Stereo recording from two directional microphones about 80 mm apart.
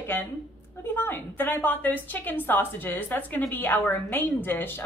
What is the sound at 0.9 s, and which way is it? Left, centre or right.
A woman's voice, left.